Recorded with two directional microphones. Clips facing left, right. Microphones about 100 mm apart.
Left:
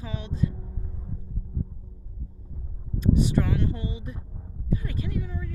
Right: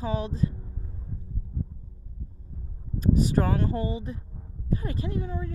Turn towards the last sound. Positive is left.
turn(degrees=-35)  # may be behind; listen again after turning